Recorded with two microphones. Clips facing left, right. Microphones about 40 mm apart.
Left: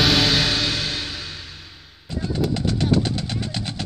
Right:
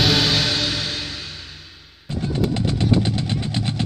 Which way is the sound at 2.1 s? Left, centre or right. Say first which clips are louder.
Right 1 dB; right.